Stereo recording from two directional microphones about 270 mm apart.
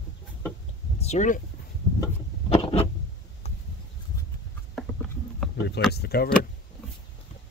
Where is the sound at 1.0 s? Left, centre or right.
Left.